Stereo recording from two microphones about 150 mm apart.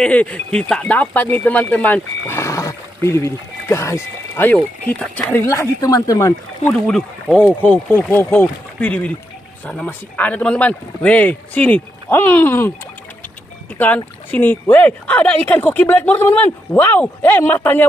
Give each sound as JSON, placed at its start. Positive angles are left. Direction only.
{"t": 0.0, "sound": "speech", "side_deg": 10}
{"t": 4.6, "sound": "speech", "side_deg": 5}
{"t": 6.7, "sound": "speech", "side_deg": 5}
{"t": 13.7, "sound": "speech", "side_deg": 10}